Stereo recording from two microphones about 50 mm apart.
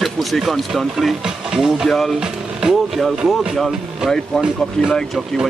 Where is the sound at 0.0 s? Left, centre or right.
Centre.